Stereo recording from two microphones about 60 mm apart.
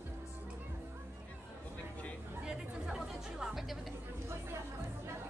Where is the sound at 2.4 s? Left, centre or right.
Centre.